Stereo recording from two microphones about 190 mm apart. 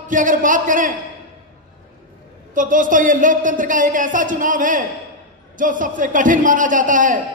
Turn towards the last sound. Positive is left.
turn(degrees=-45)  # may be behind; listen again after turning